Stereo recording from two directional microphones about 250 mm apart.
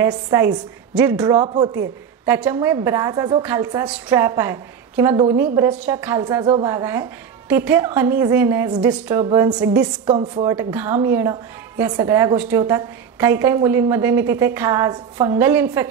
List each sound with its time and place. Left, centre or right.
0.0 s a woman's voice: centre
1.2 s a woman's voice: centre
10.5 s a woman's voice: centre